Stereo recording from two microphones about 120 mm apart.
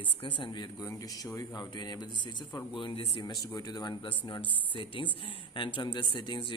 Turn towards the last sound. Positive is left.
turn(degrees=45)  # may be behind; listen again after turning